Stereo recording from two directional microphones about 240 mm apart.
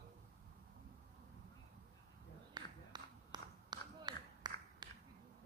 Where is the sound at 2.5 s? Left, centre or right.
Centre.